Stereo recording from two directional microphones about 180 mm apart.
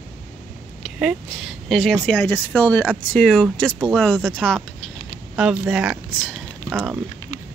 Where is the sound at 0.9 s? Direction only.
5° right (ahead or behind).